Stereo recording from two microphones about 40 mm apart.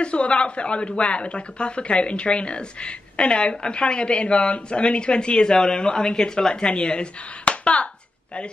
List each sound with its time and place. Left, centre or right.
0.0 s speech: left